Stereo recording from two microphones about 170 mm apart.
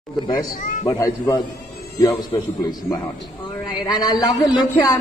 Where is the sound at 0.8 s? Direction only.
20° left (ahead or behind).